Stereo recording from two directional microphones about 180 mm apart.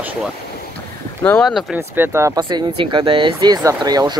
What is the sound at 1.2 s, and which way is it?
Speech, 5° left (ahead or behind).